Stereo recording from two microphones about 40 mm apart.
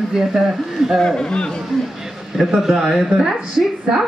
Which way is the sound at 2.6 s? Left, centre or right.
Centre.